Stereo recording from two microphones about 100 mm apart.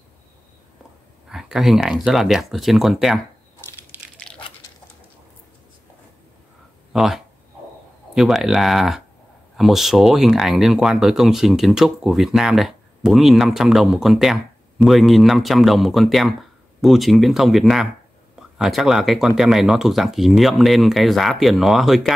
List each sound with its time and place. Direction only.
1.3 s speech: 5° right (ahead or behind)
3.9 s a sound: 15° right (ahead or behind)
6.9 s speech: 5° right (ahead or behind)